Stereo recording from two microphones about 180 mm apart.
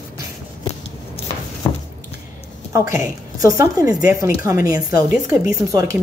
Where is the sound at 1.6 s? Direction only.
25° left (ahead or behind).